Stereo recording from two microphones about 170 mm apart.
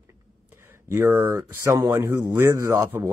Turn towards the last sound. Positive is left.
turn(degrees=-15)  # may be behind; listen again after turning